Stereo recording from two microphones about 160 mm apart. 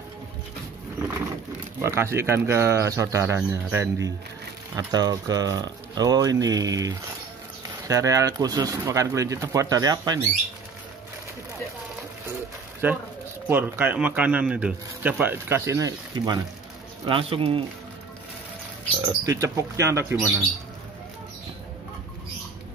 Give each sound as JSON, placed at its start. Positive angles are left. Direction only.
{"t": 1.8, "sound": "speech", "side_deg": -15}
{"t": 12.8, "sound": "speech", "side_deg": -10}
{"t": 17.0, "sound": "speech", "side_deg": -35}
{"t": 18.9, "sound": "speech", "side_deg": -20}